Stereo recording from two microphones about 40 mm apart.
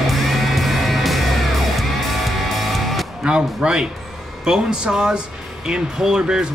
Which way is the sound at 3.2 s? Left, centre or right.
Right.